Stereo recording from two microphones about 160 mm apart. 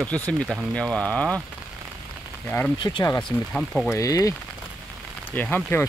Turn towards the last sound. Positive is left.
turn(degrees=10)  # may be behind; listen again after turning